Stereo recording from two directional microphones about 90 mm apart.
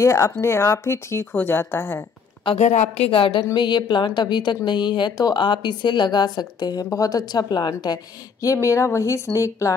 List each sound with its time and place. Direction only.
0.0 s speech: 30° left (ahead or behind)
3.1 s a woman's voice: 75° left (ahead or behind)
3.5 s a woman's voice: 55° left (ahead or behind); by 9.8 s 35° left (ahead or behind)